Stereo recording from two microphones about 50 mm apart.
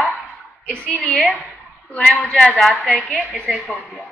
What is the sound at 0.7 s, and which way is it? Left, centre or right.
A man's voice, left.